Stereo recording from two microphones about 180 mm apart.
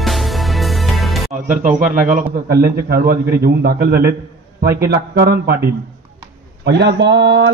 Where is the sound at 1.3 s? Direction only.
45° right (ahead or behind); by 5.8 s 60° right (ahead or behind).